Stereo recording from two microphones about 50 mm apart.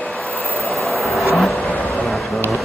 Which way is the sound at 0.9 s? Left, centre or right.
Centre.